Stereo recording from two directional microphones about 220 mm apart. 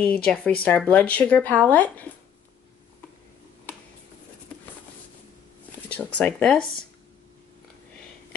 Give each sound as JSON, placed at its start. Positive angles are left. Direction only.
{"t": 0.2, "sound": "speech", "side_deg": 5}
{"t": 5.9, "sound": "speech", "side_deg": 5}